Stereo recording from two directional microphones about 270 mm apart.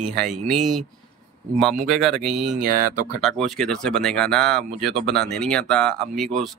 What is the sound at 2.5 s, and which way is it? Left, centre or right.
Speech, right.